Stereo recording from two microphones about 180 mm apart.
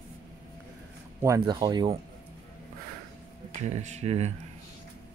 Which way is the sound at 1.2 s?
20° right (ahead or behind).